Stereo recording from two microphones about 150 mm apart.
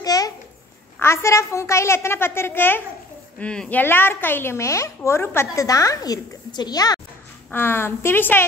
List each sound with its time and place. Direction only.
0.0 s a sound: 25° left (ahead or behind)
0.9 s a woman's voice: 20° left (ahead or behind)
7.5 s a woman's voice: 15° left (ahead or behind)